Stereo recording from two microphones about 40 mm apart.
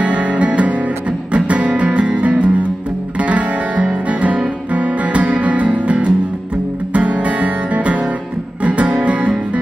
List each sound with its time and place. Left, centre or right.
0.0 s music: right